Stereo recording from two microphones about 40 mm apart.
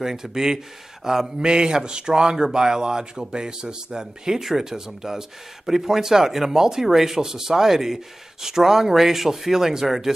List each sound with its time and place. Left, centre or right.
0.0 s a man's voice: centre